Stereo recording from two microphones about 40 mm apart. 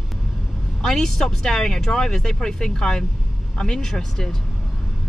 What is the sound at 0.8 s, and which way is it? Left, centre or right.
Speech, centre.